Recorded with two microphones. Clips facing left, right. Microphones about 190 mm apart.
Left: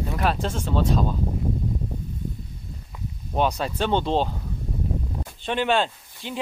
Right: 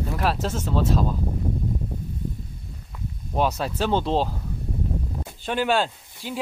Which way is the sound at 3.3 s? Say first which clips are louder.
Even; centre (ahead or behind).